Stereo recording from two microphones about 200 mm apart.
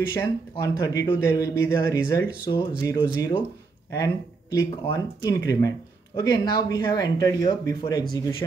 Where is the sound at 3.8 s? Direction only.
15° left (ahead or behind).